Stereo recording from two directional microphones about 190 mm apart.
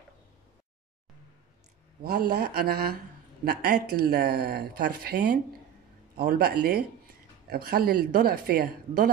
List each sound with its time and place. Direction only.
2.0 s speech: 55° right (ahead or behind)